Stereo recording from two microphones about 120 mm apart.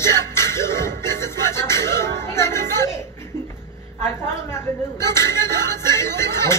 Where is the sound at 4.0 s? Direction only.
20° left (ahead or behind).